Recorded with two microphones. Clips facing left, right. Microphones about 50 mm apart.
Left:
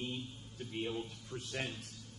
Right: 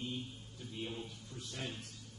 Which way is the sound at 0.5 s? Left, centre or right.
Left.